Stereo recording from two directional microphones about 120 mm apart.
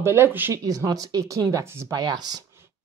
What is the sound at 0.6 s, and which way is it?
A woman's voice, 30° right (ahead or behind).